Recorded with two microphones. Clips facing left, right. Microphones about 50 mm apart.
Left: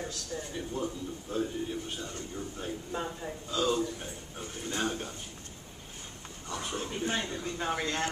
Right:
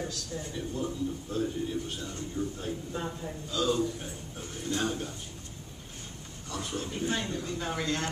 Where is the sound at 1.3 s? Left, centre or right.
Left.